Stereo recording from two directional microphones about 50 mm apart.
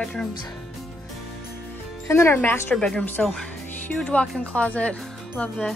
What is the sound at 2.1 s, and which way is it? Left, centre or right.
Speech, left.